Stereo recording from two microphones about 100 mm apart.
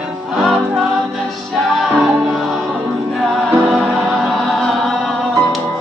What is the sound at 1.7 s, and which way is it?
Music, 5° right (ahead or behind).